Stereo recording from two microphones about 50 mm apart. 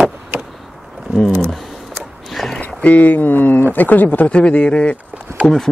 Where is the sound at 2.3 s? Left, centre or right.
Centre.